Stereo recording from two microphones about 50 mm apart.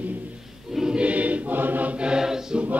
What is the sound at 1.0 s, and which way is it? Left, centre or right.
Choir, right.